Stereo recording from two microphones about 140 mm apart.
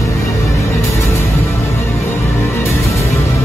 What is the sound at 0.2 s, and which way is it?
Music, 20° left (ahead or behind).